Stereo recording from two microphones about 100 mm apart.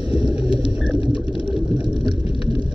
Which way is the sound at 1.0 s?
60° left (ahead or behind).